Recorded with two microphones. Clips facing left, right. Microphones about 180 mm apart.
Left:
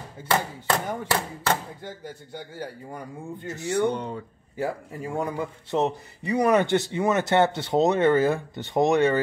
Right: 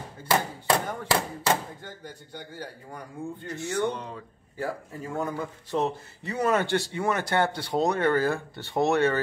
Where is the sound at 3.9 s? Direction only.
30° left (ahead or behind).